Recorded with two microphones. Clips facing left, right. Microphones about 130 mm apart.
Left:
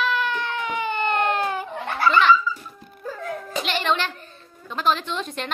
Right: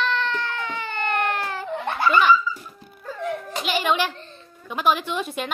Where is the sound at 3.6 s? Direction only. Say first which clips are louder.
Right 2 dB; 5° right (ahead or behind).